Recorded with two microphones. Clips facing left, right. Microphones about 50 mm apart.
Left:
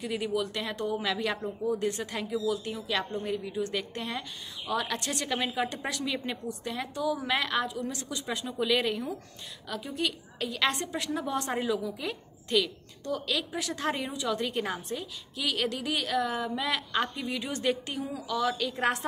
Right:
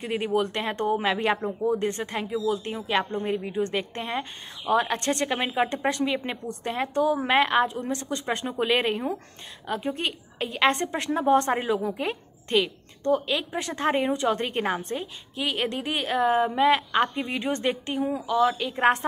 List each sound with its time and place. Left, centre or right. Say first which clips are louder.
0.0 s speech: right 5 dB; right
5.3 s speech: right 5 dB; right
6.6 s speech: right 9 dB; right
10.8 s a woman's voice: right 6 dB; right
15.3 s speech: right 3 dB; right